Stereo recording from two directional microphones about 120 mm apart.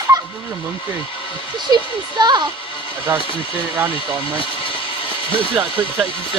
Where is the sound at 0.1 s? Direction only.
35° right (ahead or behind).